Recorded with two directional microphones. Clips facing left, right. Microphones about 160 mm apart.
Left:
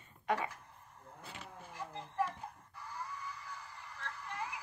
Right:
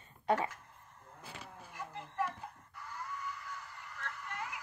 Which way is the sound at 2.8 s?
35° left (ahead or behind).